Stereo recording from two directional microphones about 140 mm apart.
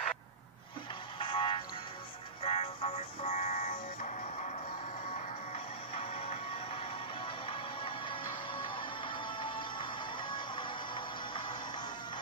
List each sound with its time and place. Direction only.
1.2 s music: 40° left (ahead or behind)
3.3 s music: 75° left (ahead or behind)
5.9 s music: 45° left (ahead or behind)